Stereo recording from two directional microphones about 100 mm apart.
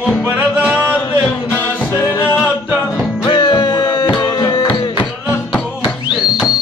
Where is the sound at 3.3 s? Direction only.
50° left (ahead or behind).